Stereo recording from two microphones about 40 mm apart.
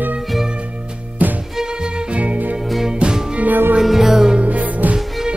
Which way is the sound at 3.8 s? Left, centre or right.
Centre.